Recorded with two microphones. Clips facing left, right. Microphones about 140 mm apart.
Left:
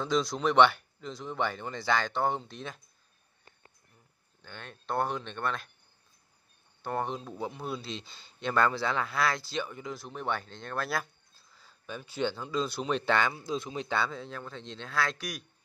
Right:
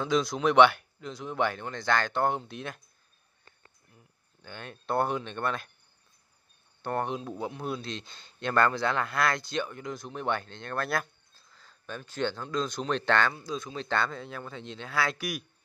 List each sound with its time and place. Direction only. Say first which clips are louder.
0.0 s speech: right 2 dB; centre (ahead or behind)
4.4 s speech: right 3 dB; 5° right (ahead or behind)
6.8 s speech: right 2 dB; centre (ahead or behind)
13.4 s speech: left 1 dB; 25° left (ahead or behind)
13.8 s speech: right 1 dB; 5° left (ahead or behind)